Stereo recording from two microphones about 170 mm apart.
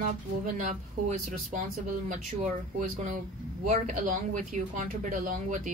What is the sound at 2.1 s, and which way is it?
A woman's voice, 45° right (ahead or behind).